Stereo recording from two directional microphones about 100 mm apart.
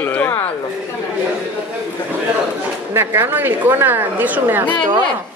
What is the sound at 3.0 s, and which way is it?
Speech, 20° right (ahead or behind).